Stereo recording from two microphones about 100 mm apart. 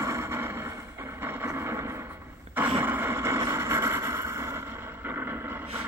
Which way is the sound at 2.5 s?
20° right (ahead or behind).